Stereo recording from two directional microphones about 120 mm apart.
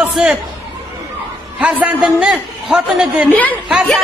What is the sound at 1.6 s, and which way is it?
A man's voice, 10° right (ahead or behind).